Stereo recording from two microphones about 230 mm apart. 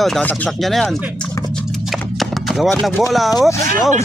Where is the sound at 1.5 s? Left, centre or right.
Centre.